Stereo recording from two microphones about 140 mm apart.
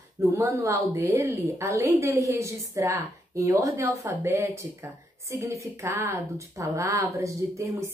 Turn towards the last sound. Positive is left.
turn(degrees=-20)  # may be behind; listen again after turning